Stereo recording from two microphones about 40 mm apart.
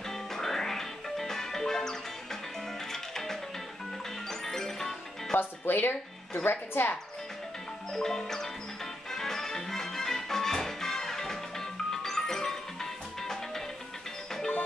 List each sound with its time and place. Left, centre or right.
0.1 s music: centre
5.3 s speech: left
6.4 s speech: left
7.9 s music: centre